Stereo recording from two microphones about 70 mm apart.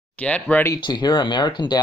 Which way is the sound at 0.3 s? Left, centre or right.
Centre.